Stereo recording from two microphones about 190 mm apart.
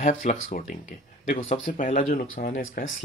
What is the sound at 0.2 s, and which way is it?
Speech, 40° left (ahead or behind).